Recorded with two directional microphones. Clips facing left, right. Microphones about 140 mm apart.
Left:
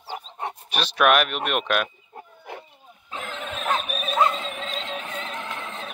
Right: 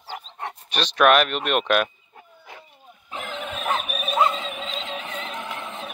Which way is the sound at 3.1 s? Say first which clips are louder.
Right 1 dB; 15° right (ahead or behind).